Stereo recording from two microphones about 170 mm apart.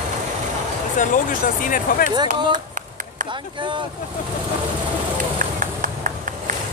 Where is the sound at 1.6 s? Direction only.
55° left (ahead or behind).